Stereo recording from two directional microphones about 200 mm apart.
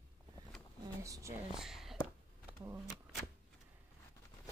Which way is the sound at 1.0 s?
15° right (ahead or behind).